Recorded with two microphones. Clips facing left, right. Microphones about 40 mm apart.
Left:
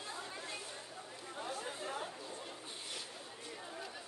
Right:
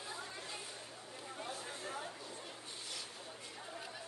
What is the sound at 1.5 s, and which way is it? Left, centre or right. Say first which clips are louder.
Chatter: left 3 dB; left.